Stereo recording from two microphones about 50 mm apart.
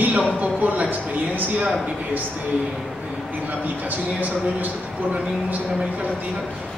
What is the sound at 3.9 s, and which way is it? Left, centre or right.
Speech, right.